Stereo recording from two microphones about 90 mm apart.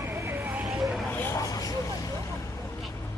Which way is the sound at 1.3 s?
40° left (ahead or behind).